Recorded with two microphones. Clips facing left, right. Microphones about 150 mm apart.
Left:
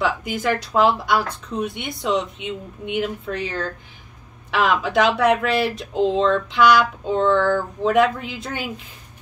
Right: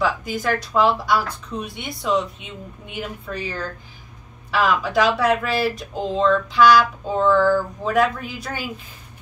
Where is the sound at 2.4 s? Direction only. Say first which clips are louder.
Left 7 dB; 80° left.